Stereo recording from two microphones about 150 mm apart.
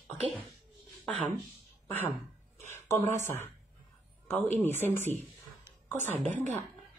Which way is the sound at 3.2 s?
15° left (ahead or behind).